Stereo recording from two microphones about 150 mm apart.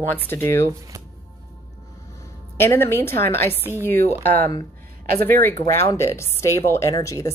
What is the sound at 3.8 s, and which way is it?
Speech, 15° left (ahead or behind).